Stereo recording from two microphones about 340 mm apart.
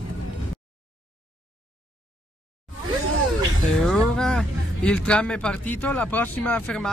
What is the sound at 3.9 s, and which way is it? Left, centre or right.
Speech, centre.